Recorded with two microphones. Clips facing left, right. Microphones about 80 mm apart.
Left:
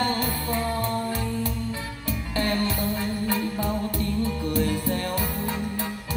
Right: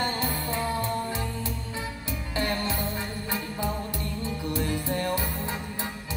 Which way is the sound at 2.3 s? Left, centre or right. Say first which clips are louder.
Left 3 dB; centre.